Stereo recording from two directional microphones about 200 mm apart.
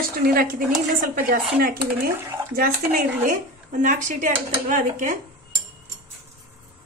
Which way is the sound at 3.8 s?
40° right (ahead or behind).